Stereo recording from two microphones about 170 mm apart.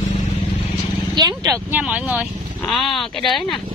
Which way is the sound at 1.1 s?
20° right (ahead or behind).